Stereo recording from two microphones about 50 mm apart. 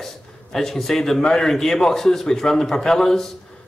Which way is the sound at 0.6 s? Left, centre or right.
Centre.